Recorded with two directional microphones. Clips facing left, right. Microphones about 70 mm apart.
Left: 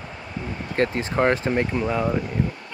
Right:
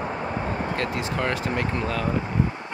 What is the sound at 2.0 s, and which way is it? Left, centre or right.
Speech, right.